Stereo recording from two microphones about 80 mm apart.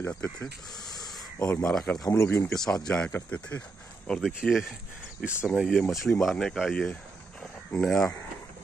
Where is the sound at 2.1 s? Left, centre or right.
Left.